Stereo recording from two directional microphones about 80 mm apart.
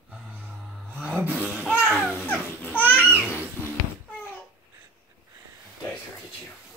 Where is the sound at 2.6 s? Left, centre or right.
Left.